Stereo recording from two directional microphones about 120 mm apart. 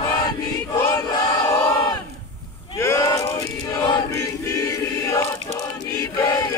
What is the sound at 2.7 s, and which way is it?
Battle cry, 25° left (ahead or behind).